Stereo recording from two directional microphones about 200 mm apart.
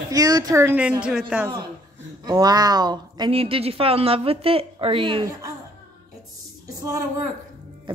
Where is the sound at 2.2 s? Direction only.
20° right (ahead or behind).